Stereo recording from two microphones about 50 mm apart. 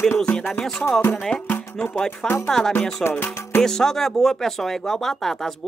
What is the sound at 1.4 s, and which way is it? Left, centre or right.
Music, left.